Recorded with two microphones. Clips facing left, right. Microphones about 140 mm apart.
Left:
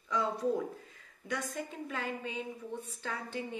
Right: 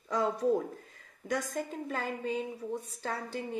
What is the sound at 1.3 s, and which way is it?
Speech, 40° right (ahead or behind).